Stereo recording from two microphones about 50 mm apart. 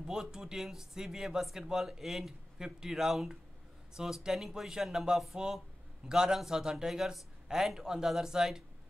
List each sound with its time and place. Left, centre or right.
0.0 s speech: centre